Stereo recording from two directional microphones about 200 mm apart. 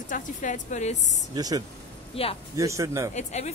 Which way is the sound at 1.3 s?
20° right (ahead or behind).